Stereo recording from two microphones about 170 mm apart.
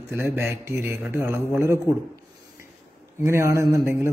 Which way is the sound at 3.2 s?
15° right (ahead or behind).